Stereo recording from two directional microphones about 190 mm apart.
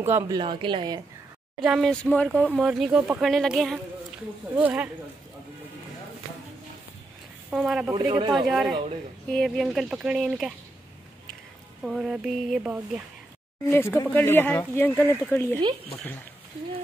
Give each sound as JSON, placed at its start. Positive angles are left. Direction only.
{"t": 0.0, "sound": "speech", "side_deg": -10}
{"t": 0.4, "sound": "speech", "side_deg": -25}
{"t": 1.6, "sound": "speech", "side_deg": 0}
{"t": 7.5, "sound": "speech", "side_deg": -5}
{"t": 7.9, "sound": "speech", "side_deg": -25}
{"t": 8.4, "sound": "speech", "side_deg": 0}
{"t": 11.8, "sound": "speech", "side_deg": 0}
{"t": 13.7, "sound": "speech", "side_deg": 15}